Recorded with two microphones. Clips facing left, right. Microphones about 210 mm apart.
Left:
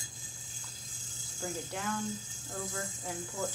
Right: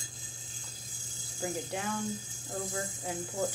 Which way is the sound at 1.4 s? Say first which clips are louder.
Right 3 dB; 15° right (ahead or behind).